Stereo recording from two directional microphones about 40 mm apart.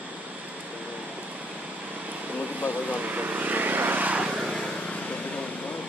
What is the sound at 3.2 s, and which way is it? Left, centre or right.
Vehicle, right.